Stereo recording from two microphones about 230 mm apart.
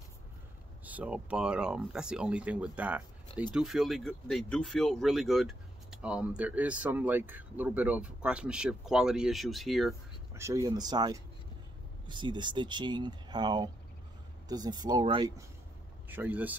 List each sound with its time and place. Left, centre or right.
0.8 s speech: centre
10.3 s speech: centre
16.1 s speech: centre